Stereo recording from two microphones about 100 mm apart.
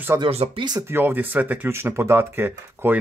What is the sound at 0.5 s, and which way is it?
Speech, 45° right (ahead or behind).